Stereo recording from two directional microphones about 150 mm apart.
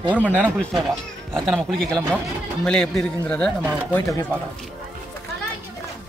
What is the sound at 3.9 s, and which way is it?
Speech, 20° left (ahead or behind).